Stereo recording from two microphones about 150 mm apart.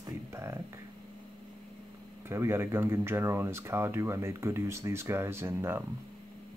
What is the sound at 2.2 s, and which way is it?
Speech, 15° right (ahead or behind).